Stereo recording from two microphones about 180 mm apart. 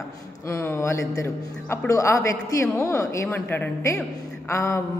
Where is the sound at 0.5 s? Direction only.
15° left (ahead or behind).